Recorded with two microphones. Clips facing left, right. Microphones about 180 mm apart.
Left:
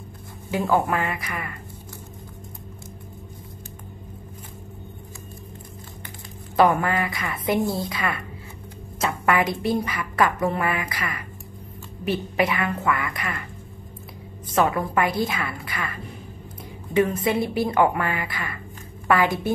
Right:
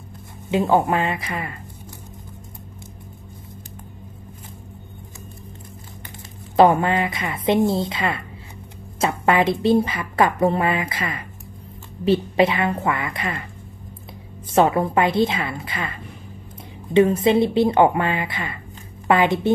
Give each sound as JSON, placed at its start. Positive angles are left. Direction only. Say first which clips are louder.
{"t": 0.5, "sound": "a woman's voice", "louder": "right 4 dB", "side_deg": -20}
{"t": 6.5, "sound": "a woman's voice", "louder": "right 4 dB", "side_deg": -25}
{"t": 14.5, "sound": "a woman's voice", "louder": "right 4 dB", "side_deg": -25}